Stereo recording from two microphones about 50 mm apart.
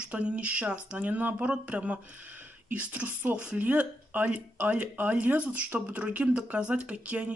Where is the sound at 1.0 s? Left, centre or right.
Right.